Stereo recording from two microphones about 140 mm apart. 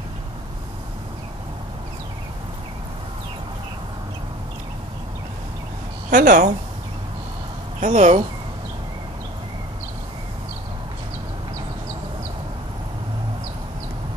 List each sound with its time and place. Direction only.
6.0 s speech: 70° right (ahead or behind)
7.8 s speech: 55° right (ahead or behind)